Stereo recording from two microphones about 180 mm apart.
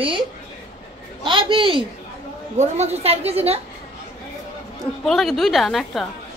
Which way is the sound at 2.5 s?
40° right (ahead or behind).